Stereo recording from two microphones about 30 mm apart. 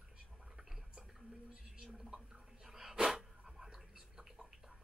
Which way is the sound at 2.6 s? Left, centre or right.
Centre.